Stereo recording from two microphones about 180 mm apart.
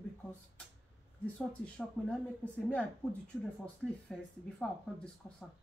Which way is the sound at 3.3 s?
5° left (ahead or behind).